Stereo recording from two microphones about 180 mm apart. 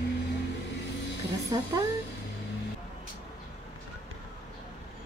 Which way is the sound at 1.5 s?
20° right (ahead or behind).